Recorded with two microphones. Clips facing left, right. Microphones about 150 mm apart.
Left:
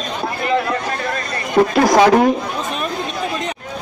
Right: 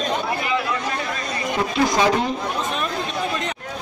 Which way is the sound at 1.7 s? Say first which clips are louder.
Left 6 dB; 70° left (ahead or behind).